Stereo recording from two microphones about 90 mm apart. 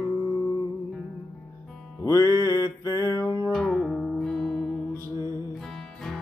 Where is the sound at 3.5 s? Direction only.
5° left (ahead or behind).